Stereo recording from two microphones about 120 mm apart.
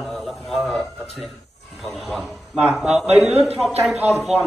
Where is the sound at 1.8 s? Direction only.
Centre (ahead or behind); by 4.2 s 15° right (ahead or behind).